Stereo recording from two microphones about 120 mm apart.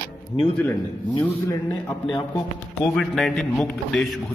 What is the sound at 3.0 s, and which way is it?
A man's voice, 5° left (ahead or behind).